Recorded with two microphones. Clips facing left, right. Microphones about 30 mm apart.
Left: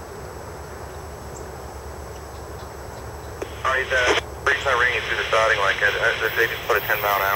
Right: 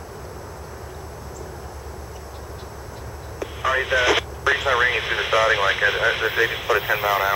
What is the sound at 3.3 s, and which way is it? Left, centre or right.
Speech, centre.